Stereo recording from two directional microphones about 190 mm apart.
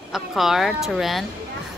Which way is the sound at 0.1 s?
Centre (ahead or behind).